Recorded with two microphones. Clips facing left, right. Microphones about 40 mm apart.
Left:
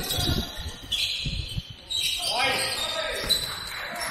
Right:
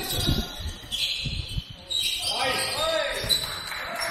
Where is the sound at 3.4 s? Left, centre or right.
Right.